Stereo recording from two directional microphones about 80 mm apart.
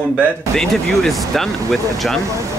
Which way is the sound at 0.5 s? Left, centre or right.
Centre.